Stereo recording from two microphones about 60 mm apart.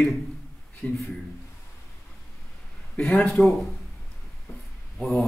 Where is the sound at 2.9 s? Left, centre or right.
Centre.